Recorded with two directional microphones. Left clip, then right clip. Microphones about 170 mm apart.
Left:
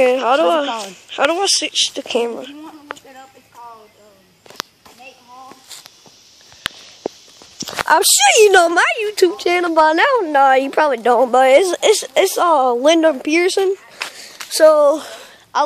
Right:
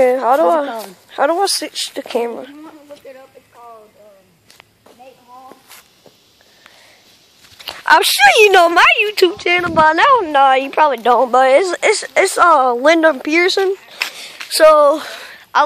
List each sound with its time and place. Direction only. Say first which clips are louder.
0.0 s speech: right 1 dB; 5° right (ahead or behind)
2.0 s speech: even; 5° left (ahead or behind)
7.9 s speech: right 3 dB; 10° left (ahead or behind)
9.4 s a woman's voice: right 1 dB; 20° left (ahead or behind)
10.1 s speech: right 2 dB; 10° left (ahead or behind)
10.5 s a woman's voice: right 1 dB; 30° left (ahead or behind)
10.9 s speech: right 1 dB; 15° left (ahead or behind)
14.0 s a sound: right 5 dB; 50° right (ahead or behind)
14.5 s speech: right 2 dB; centre (ahead or behind)